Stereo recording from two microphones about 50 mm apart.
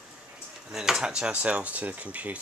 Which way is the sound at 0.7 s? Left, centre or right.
Centre.